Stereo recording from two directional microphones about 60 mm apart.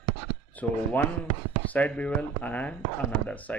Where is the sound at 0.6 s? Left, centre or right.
Left.